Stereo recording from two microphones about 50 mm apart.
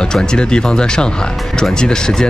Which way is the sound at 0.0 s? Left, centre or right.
Centre.